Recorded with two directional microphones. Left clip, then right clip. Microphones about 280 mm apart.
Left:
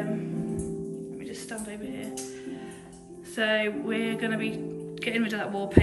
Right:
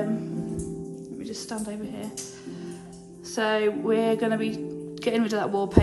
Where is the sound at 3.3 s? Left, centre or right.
Centre.